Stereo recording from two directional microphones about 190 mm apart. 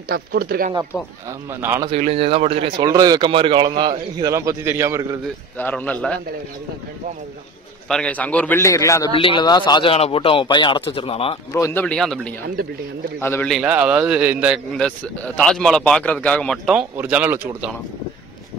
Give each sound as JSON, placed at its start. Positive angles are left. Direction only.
{"t": 0.1, "sound": "speech", "side_deg": -55}
{"t": 1.5, "sound": "a man's voice", "side_deg": -15}
{"t": 1.9, "sound": "speech", "side_deg": -35}
{"t": 2.8, "sound": "speech", "side_deg": -20}
{"t": 5.6, "sound": "a man's voice", "side_deg": 10}
{"t": 7.9, "sound": "a man's voice", "side_deg": 5}
{"t": 9.1, "sound": "speech", "side_deg": 30}
{"t": 11.5, "sound": "a man's voice", "side_deg": 15}
{"t": 13.5, "sound": "a man's voice", "side_deg": -5}
{"t": 14.8, "sound": "a man's voice", "side_deg": 5}